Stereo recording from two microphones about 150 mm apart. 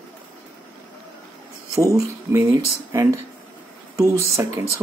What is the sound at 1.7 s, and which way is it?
Speech, 20° right (ahead or behind).